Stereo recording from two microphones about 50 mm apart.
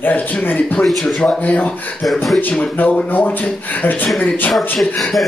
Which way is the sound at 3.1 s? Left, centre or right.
Left.